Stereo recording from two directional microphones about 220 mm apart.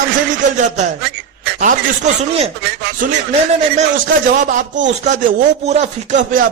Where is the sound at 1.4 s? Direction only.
35° right (ahead or behind).